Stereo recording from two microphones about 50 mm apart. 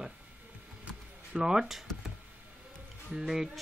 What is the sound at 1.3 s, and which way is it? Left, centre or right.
Speech, centre.